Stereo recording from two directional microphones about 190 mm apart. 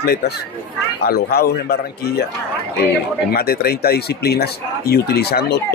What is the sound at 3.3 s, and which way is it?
Speech, 55° left (ahead or behind).